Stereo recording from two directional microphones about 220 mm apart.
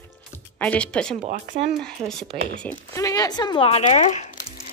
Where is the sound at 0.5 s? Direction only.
5° left (ahead or behind).